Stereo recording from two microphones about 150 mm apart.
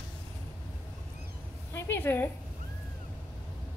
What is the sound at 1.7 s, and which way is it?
Speech, 15° left (ahead or behind).